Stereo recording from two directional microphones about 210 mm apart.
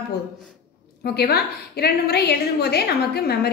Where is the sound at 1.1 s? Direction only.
50° left (ahead or behind).